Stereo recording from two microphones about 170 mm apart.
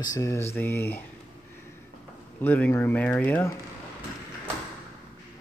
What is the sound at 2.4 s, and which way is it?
Speech, 10° left (ahead or behind).